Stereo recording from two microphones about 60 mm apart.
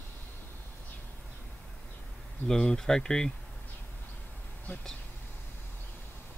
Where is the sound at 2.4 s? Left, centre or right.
Centre.